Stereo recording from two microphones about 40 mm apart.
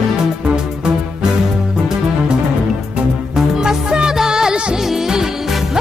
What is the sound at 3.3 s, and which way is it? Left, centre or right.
Music, centre.